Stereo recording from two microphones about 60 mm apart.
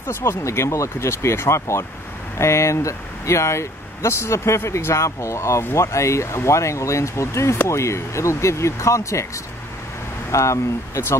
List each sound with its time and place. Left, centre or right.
0.0 s speech: left
10.3 s speech: left